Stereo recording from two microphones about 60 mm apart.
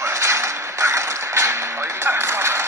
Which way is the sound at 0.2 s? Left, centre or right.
Right.